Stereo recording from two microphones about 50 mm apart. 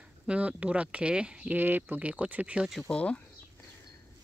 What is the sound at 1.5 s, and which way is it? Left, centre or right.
Speech, right.